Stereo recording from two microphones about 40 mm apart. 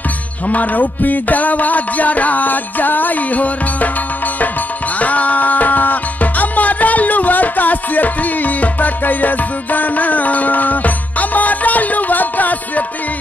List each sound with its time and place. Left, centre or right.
0.5 s music: left
5.0 s music: left